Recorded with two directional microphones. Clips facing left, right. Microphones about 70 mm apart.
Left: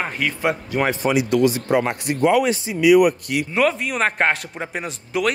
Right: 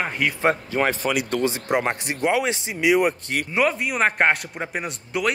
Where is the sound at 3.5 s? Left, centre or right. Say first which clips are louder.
Left 1 dB; centre.